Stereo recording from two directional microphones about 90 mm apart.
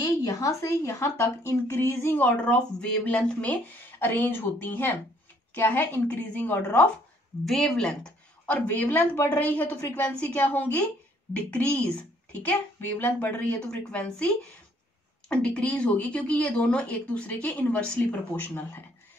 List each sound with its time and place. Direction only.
0.0 s speech: 40° left (ahead or behind); by 6.9 s 20° left (ahead or behind)
7.4 s speech: 5° left (ahead or behind)
8.6 s a woman's voice: 20° left (ahead or behind)